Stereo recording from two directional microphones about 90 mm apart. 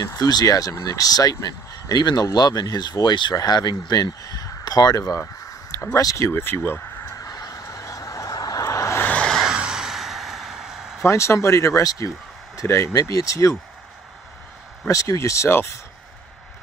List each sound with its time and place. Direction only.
0.0 s speech: 45° left (ahead or behind)
5.2 s a sound: 25° left (ahead or behind)
5.9 s speech: 40° left (ahead or behind)
7.2 s vehicle: 45° left (ahead or behind)
9.0 s vehicle: 15° left (ahead or behind)
9.3 s a sound: 5° right (ahead or behind)
11.1 s speech: 30° left (ahead or behind)
14.9 s speech: 35° left (ahead or behind)